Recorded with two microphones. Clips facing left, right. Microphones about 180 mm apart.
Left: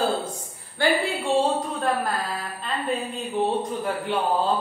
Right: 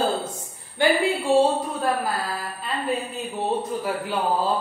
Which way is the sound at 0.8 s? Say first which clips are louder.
Right 2 dB; 15° right (ahead or behind).